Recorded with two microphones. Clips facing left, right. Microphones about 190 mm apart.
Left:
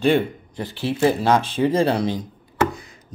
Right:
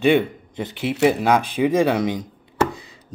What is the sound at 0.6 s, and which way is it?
Speech, 20° right (ahead or behind).